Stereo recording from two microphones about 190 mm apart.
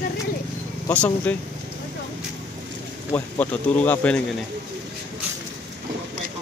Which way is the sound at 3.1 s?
10° left (ahead or behind).